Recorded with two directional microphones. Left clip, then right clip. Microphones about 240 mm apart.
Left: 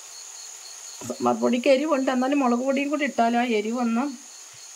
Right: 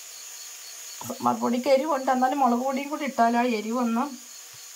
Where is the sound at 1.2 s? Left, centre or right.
Centre.